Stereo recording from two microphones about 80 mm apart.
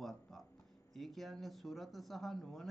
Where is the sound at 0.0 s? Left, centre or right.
Centre.